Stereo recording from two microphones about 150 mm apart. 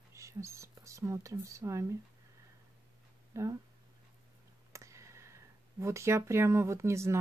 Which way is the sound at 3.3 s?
20° right (ahead or behind).